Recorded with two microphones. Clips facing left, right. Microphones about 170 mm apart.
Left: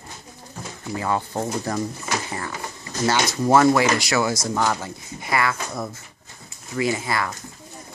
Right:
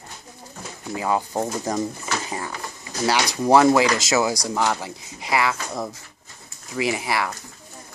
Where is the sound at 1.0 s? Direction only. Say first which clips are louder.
Right 2 dB; 15° right (ahead or behind).